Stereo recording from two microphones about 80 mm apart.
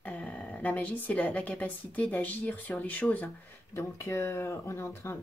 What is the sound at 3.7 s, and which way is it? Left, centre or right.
Speech, left.